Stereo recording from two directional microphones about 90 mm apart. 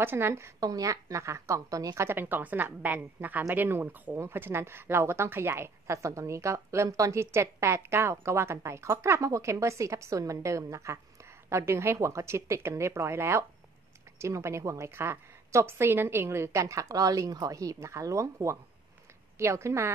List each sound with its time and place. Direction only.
0.0 s a woman's voice: 25° right (ahead or behind)
0.6 s a woman's voice: 40° right (ahead or behind)
2.0 s a woman's voice: 25° right (ahead or behind)